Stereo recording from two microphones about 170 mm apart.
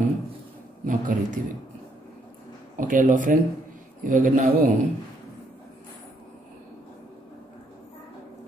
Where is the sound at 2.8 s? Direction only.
50° right (ahead or behind).